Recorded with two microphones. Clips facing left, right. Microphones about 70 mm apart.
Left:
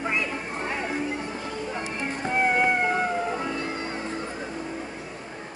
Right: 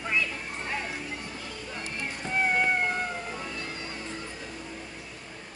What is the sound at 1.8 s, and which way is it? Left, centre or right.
Music, left.